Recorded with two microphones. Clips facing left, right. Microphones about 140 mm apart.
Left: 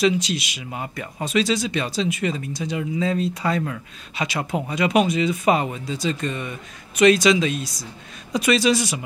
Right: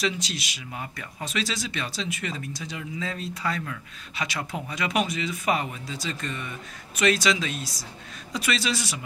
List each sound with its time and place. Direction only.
0.0 s a man's voice: 20° left (ahead or behind)